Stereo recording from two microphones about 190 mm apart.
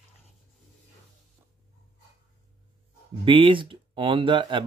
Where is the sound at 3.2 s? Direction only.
25° right (ahead or behind).